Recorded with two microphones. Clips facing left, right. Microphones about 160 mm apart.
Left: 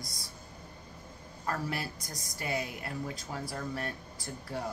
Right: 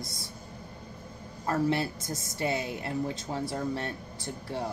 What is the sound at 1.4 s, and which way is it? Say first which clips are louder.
A woman's voice: right 8 dB; 25° right (ahead or behind).